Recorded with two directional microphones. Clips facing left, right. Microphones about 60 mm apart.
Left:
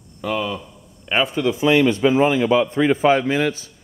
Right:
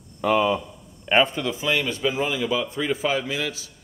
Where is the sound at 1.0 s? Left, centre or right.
Centre.